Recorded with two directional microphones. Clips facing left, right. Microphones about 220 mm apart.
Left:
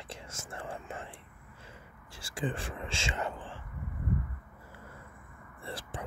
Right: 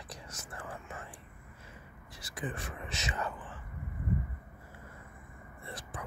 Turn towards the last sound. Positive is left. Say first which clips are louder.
# left 3 dB
turn(degrees=30)  # may be behind; listen again after turning